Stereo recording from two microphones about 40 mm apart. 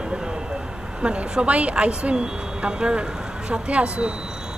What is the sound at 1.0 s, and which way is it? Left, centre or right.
Speech, right.